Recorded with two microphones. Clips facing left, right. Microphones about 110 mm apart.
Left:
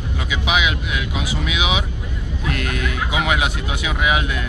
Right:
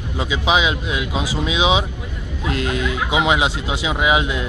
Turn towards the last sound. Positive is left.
turn(degrees=-20)  # may be behind; listen again after turning